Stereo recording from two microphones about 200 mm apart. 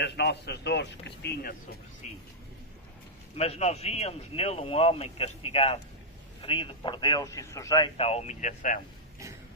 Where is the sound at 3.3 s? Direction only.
30° left (ahead or behind).